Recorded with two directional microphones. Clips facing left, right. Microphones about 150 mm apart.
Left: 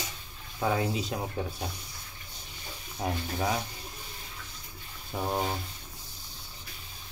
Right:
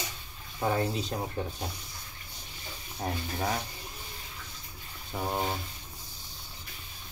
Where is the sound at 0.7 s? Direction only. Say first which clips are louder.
Even; 5° left (ahead or behind).